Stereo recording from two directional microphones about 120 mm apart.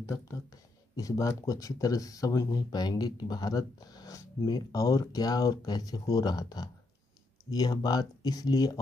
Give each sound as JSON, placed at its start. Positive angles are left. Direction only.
{"t": 0.1, "sound": "speech", "side_deg": 25}